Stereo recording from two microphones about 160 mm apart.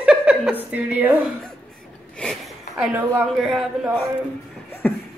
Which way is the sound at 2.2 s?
Centre (ahead or behind).